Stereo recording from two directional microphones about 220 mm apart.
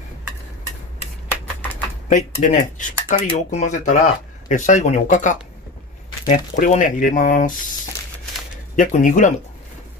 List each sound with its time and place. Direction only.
2.0 s speech: 35° left (ahead or behind)
8.7 s speech: 35° left (ahead or behind)